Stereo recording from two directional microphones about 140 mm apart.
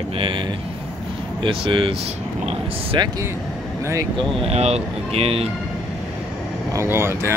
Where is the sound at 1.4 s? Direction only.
40° right (ahead or behind).